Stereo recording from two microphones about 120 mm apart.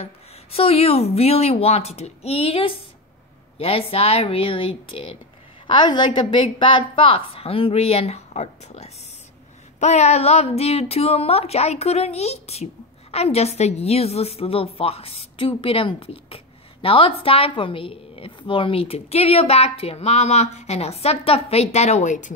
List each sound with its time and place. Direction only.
0.0 s a woman's voice: 55° left (ahead or behind); by 22.3 s 90° left